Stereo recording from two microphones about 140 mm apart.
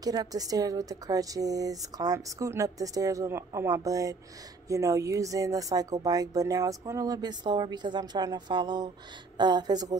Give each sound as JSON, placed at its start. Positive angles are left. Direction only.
{"t": 0.0, "sound": "speech", "side_deg": -25}